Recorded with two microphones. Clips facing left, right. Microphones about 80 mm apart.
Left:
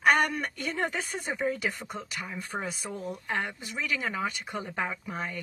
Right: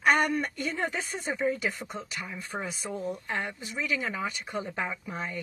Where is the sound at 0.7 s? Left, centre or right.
Left.